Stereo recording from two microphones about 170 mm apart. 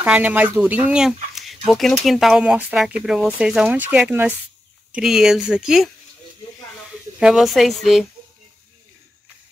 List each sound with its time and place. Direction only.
0.0 s speech: 10° right (ahead or behind)
7.2 s speech: 5° right (ahead or behind)